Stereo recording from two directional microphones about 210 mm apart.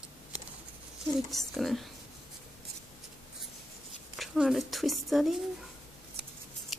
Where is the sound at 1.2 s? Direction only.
Centre (ahead or behind).